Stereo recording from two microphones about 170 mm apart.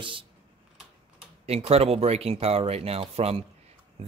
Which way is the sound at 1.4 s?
35° right (ahead or behind).